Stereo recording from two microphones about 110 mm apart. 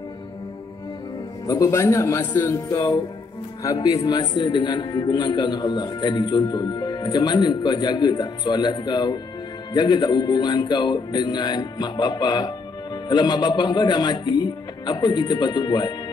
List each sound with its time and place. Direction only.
1.5 s a man's voice: 30° left (ahead or behind)
3.6 s speech: 35° left (ahead or behind)